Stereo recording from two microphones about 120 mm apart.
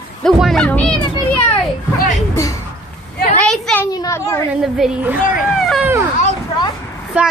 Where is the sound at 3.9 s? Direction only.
35° left (ahead or behind).